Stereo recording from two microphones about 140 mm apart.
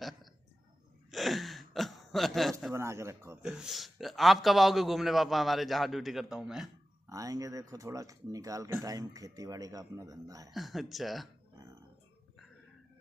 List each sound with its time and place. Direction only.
1.1 s gasp: centre (ahead or behind)
2.7 s speech: 20° right (ahead or behind)
3.4 s a man's voice: 5° right (ahead or behind)
7.1 s speech: 25° right (ahead or behind)
10.5 s a man's voice: centre (ahead or behind)